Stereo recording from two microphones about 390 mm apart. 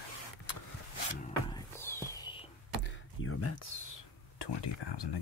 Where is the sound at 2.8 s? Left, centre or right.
Left.